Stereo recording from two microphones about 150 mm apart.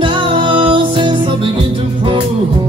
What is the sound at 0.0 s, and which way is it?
Music, 35° right (ahead or behind).